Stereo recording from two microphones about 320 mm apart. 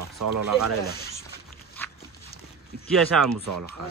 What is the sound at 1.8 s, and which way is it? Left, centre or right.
Dog, centre.